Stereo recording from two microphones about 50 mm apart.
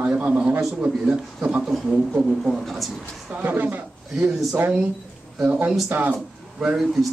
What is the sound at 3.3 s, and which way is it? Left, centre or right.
Music, right.